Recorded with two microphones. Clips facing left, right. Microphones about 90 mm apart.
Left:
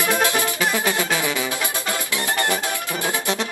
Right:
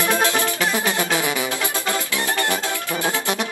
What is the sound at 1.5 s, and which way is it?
Music, 20° left (ahead or behind).